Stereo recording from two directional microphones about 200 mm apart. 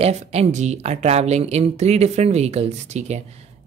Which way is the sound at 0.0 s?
30° right (ahead or behind).